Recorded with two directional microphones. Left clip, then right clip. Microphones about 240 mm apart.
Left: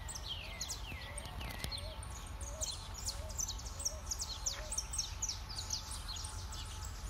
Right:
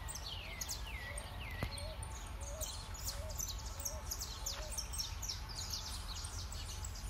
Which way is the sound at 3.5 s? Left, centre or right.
Right.